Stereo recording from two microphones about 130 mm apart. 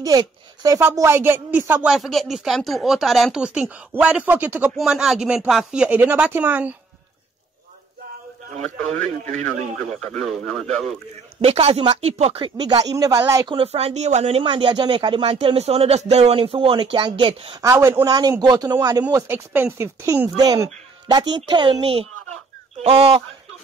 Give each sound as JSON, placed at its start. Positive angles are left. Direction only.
{"t": 0.0, "sound": "speech", "side_deg": -30}
{"t": 0.7, "sound": "speech", "side_deg": -20}
{"t": 2.0, "sound": "speech", "side_deg": 0}
{"t": 8.9, "sound": "a man's voice", "side_deg": 15}
{"t": 11.4, "sound": "speech", "side_deg": -50}
{"t": 13.5, "sound": "speech", "side_deg": -50}
{"t": 15.2, "sound": "speech", "side_deg": -50}
{"t": 17.6, "sound": "speech", "side_deg": -25}
{"t": 19.2, "sound": "speech", "side_deg": -15}